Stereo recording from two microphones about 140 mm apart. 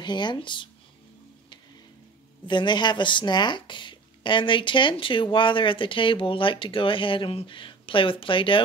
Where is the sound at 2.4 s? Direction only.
35° left (ahead or behind).